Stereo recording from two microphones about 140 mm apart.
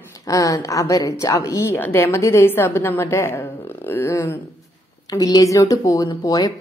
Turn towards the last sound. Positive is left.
turn(degrees=25)  # may be behind; listen again after turning